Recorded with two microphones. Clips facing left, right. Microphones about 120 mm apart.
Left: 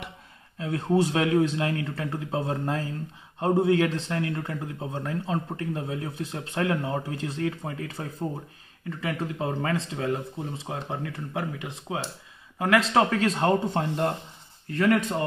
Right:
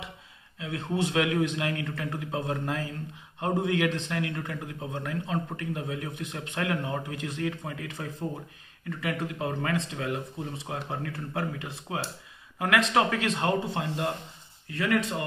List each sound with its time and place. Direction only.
0.6 s speech: 40° left (ahead or behind); by 12.0 s 20° left (ahead or behind)
12.5 s speech: 30° left (ahead or behind); by 15.2 s 45° left (ahead or behind)